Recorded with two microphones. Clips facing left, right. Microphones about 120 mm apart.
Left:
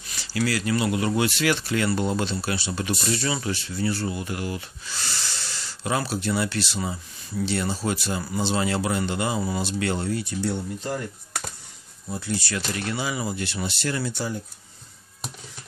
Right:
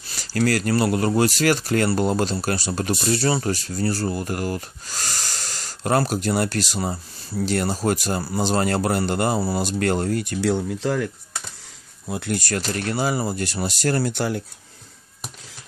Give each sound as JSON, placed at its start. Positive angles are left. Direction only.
{"t": 0.0, "sound": "speech", "side_deg": -40}
{"t": 10.3, "sound": "speech", "side_deg": -90}
{"t": 12.1, "sound": "speech", "side_deg": -65}
{"t": 12.4, "sound": "speech", "side_deg": -45}
{"t": 14.1, "sound": "speech", "side_deg": -70}